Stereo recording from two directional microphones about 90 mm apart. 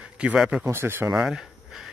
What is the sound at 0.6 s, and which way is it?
Speech, 25° right (ahead or behind).